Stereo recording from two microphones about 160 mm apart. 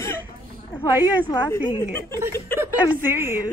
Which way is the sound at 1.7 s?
15° left (ahead or behind).